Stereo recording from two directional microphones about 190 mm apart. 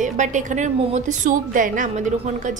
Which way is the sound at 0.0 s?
40° right (ahead or behind).